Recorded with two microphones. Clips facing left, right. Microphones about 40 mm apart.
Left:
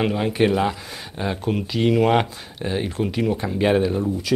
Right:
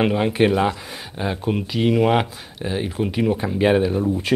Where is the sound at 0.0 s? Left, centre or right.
Centre.